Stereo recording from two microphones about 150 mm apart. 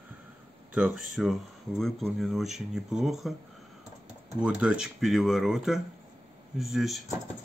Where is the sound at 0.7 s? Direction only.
5° right (ahead or behind).